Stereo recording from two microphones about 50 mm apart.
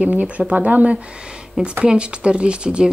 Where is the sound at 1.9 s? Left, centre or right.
Right.